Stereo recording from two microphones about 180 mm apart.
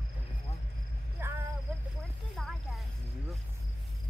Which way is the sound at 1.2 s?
10° right (ahead or behind).